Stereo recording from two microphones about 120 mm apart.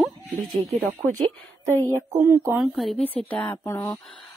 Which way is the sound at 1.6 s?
25° right (ahead or behind).